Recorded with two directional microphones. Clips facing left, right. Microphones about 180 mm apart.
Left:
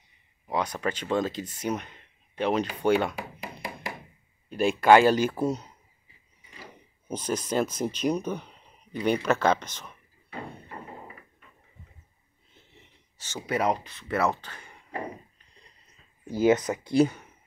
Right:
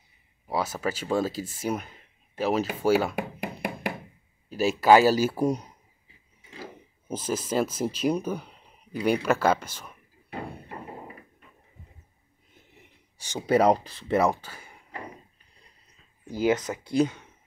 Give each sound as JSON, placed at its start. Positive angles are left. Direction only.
{"t": 0.5, "sound": "speech", "side_deg": -5}
{"t": 3.2, "sound": "a sound", "side_deg": -60}
{"t": 4.5, "sound": "speech", "side_deg": -5}
{"t": 7.1, "sound": "speech", "side_deg": -5}
{"t": 12.5, "sound": "gasp", "side_deg": -15}
{"t": 13.5, "sound": "speech", "side_deg": -35}
{"t": 14.1, "sound": "speech", "side_deg": -15}
{"t": 16.3, "sound": "speech", "side_deg": 10}